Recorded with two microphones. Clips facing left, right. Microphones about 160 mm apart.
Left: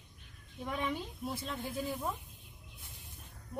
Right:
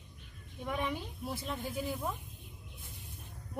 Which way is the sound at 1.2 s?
Centre (ahead or behind).